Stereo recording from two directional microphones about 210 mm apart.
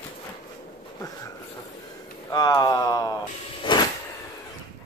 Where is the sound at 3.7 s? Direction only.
20° left (ahead or behind).